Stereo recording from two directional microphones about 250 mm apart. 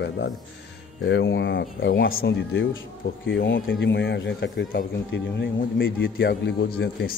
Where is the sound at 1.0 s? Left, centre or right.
Left.